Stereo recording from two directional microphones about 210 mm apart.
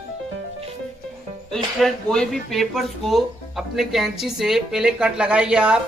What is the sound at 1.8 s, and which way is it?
Speech, centre (ahead or behind).